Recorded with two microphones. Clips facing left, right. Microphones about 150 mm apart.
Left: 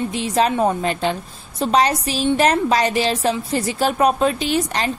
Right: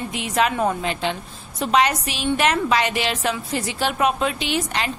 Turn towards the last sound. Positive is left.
turn(degrees=40)  # may be behind; listen again after turning